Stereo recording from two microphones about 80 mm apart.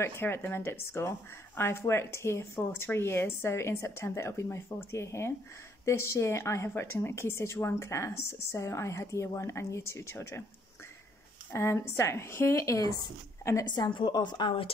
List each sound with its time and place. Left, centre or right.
0.0 s a woman's voice: left
11.5 s a woman's voice: left
13.4 s a sound: left
13.7 s a woman's voice: left